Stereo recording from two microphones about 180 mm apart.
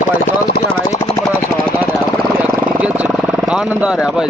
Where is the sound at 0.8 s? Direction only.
20° left (ahead or behind).